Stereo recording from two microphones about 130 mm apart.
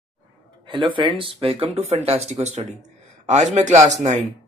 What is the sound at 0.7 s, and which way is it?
Speech, 40° right (ahead or behind).